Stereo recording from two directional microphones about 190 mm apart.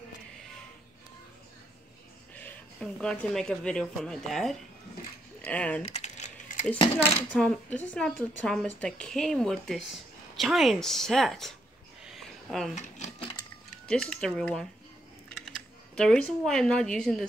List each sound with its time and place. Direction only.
2.3 s speech: 5° left (ahead or behind)
5.8 s typing: 35° left (ahead or behind)
7.3 s speech: 5° left (ahead or behind)
12.0 s a sound: centre (ahead or behind)
12.7 s a sound: 35° left (ahead or behind)
13.8 s speech: 5° left (ahead or behind)